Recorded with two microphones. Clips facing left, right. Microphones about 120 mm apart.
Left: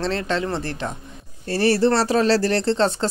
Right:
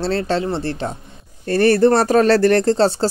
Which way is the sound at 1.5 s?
55° right (ahead or behind).